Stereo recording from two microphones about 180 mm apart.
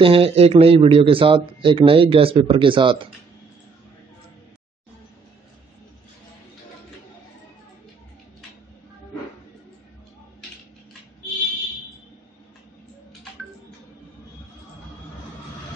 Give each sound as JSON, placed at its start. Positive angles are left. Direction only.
{"t": 0.0, "sound": "a man's voice", "side_deg": -30}